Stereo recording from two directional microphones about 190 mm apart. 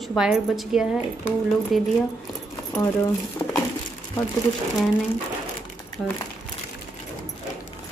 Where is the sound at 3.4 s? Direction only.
20° left (ahead or behind).